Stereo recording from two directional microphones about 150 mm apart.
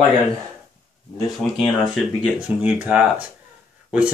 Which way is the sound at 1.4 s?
Centre (ahead or behind).